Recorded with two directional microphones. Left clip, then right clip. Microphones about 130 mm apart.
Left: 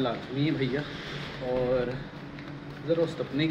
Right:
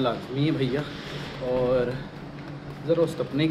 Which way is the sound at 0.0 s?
20° right (ahead or behind).